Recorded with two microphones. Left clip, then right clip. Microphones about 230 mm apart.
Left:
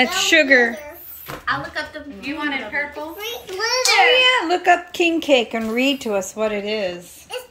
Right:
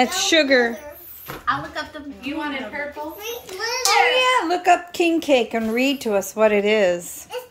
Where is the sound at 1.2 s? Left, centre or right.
Right.